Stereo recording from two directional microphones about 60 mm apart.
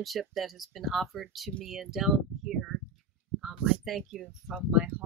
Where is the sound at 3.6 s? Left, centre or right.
Centre.